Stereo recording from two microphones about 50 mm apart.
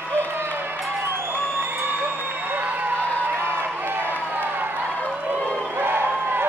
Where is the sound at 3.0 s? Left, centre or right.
Left.